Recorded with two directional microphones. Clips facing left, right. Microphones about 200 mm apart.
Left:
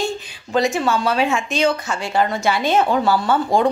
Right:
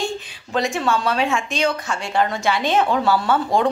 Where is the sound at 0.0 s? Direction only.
Centre (ahead or behind).